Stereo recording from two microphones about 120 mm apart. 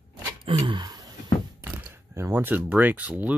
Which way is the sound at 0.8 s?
35° right (ahead or behind).